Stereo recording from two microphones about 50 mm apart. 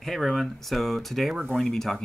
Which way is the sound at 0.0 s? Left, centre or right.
Centre.